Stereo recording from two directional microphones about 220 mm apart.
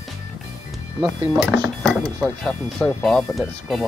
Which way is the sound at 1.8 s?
Centre (ahead or behind).